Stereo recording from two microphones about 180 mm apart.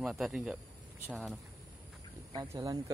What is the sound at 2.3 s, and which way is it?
Speech, 20° right (ahead or behind).